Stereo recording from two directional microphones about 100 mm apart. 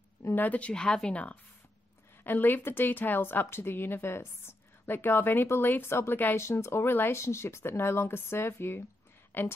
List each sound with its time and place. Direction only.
0.2 s a woman's voice: 20° left (ahead or behind)